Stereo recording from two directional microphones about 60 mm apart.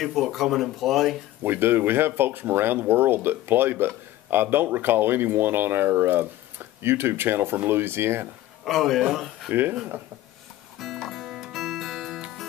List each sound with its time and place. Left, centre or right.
0.0 s speech: centre
1.4 s speech: right
8.6 s speech: centre
9.5 s speech: right
10.8 s music: centre